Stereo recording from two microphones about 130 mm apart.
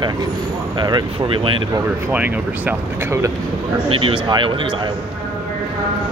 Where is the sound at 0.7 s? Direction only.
35° right (ahead or behind).